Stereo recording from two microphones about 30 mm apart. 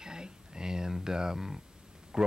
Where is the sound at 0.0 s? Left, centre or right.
Right.